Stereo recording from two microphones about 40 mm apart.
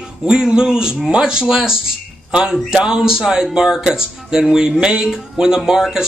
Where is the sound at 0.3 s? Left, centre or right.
Centre.